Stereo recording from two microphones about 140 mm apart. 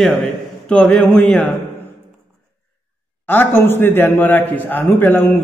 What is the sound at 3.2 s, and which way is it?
A man's voice, 15° left (ahead or behind).